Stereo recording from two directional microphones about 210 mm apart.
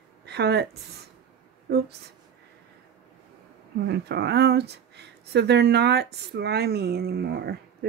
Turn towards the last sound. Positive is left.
turn(degrees=-50)  # may be behind; listen again after turning